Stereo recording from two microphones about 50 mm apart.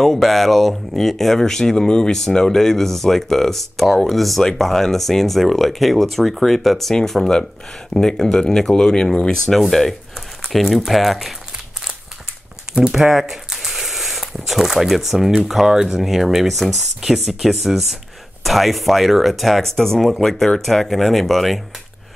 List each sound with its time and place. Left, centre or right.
0.0 s speech: centre
9.5 s speech: centre
12.7 s speech: centre